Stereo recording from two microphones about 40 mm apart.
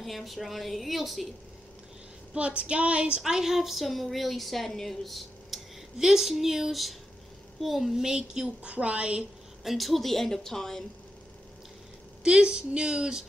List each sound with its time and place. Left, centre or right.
0.0 s speech: centre
2.3 s a woman's voice: right
3.2 s speech: centre
5.9 s a woman's voice: centre; by 9.2 s right
9.7 s speech: centre
12.2 s a woman's voice: right